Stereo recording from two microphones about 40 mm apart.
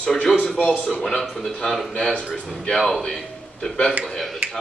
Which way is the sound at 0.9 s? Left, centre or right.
Centre.